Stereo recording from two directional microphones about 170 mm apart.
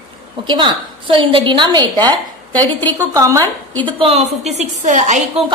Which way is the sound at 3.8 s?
30° right (ahead or behind).